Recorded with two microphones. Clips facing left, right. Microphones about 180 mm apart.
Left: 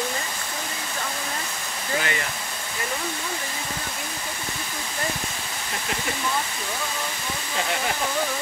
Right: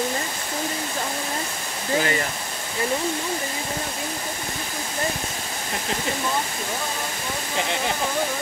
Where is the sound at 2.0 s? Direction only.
35° right (ahead or behind).